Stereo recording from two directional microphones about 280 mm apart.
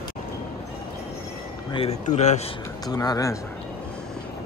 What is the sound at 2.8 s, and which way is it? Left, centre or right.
Speech, centre.